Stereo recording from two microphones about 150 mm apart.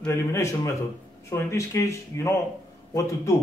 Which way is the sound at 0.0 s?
15° left (ahead or behind).